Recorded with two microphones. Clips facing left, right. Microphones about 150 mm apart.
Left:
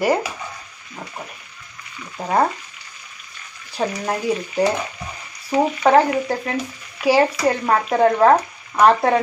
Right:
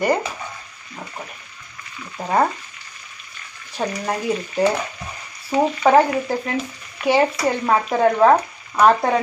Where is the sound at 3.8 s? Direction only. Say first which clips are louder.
Left 1 dB; centre (ahead or behind).